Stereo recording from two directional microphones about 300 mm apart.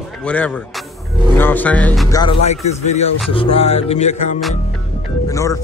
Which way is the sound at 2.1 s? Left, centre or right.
Centre.